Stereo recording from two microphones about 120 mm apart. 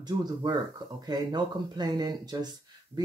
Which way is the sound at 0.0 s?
35° right (ahead or behind).